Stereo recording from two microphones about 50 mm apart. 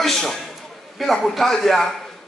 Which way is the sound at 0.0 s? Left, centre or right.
Centre.